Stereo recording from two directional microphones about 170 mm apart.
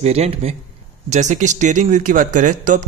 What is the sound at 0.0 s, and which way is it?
A man's voice, 40° right (ahead or behind).